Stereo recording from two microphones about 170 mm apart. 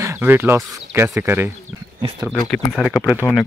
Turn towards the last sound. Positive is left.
turn(degrees=5)  # may be behind; listen again after turning